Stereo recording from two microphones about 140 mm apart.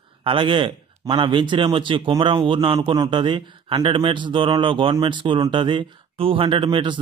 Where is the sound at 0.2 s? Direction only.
40° right (ahead or behind).